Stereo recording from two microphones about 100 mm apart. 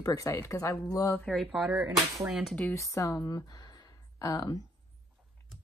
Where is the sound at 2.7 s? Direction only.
30° left (ahead or behind).